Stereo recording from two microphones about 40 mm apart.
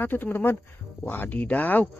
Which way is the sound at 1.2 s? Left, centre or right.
Left.